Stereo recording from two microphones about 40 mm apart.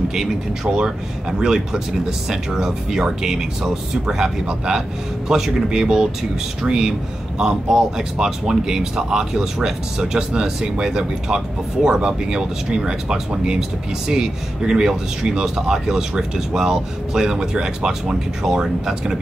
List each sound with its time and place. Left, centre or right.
0.7 s a man's voice: right